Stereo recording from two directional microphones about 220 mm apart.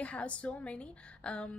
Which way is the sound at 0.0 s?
5° left (ahead or behind).